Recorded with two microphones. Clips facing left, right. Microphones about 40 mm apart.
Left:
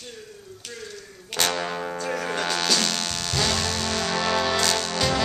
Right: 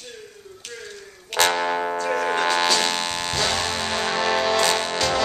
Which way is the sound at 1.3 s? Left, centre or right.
Centre.